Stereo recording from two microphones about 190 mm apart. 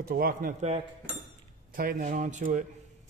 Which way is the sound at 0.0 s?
50° right (ahead or behind).